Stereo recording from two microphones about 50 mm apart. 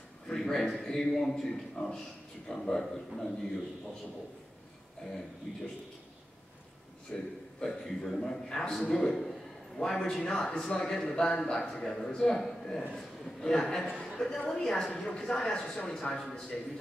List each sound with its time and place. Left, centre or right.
0.3 s a sound: centre
0.8 s speech: centre
7.1 s a man's voice: centre